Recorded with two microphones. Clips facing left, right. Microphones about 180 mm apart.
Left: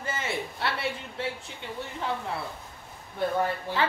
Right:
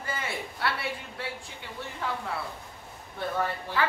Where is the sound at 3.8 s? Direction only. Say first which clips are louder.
Even; 20° left (ahead or behind).